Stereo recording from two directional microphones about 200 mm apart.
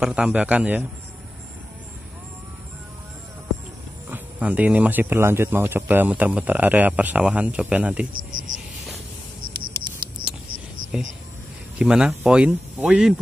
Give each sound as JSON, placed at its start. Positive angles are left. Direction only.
{"t": 0.0, "sound": "speech", "side_deg": -5}
{"t": 4.1, "sound": "speech", "side_deg": -5}
{"t": 8.1, "sound": "cricket", "side_deg": -45}
{"t": 10.9, "sound": "speech", "side_deg": -5}